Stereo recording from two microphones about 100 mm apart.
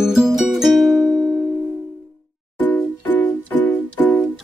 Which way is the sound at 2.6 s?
15° left (ahead or behind).